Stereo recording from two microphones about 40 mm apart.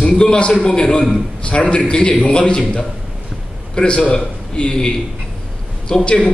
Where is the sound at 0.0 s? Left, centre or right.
Left.